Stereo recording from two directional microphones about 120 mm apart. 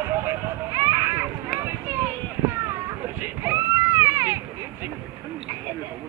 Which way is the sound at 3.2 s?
25° right (ahead or behind).